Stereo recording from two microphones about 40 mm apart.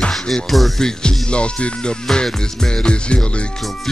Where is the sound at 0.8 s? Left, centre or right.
Centre.